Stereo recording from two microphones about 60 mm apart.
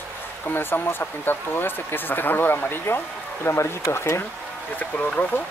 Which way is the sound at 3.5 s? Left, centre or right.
Left.